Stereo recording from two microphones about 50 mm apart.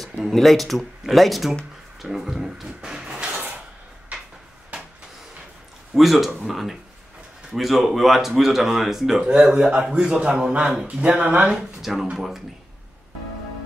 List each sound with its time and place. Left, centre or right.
0.3 s speech: centre
2.9 s a sound: centre
5.9 s speech: centre
9.3 s a man's voice: centre
11.8 s speech: centre